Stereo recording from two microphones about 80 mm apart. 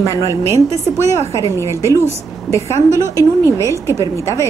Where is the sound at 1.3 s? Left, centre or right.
Left.